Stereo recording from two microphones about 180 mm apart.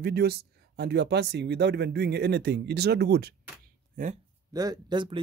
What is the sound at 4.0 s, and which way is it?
Speech, 50° right (ahead or behind).